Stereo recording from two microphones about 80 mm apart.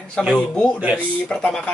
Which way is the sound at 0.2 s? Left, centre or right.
Centre.